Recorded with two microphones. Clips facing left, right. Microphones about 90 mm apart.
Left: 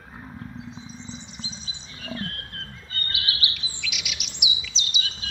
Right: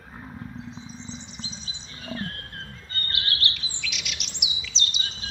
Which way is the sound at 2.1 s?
25° right (ahead or behind).